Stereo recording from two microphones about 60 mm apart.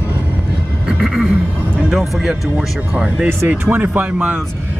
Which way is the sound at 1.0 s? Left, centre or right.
Centre.